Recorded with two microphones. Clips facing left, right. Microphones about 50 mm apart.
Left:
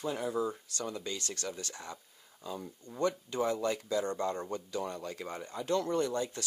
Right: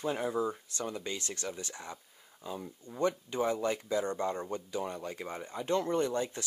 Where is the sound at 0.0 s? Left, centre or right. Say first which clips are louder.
Right 2 dB; right.